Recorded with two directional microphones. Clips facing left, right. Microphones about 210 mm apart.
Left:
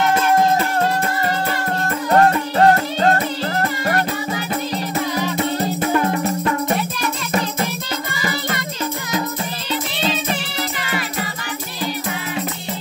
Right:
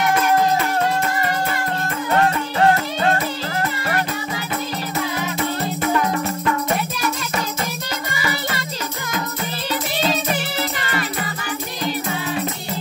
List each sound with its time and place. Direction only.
2.1 s music: 40° left (ahead or behind)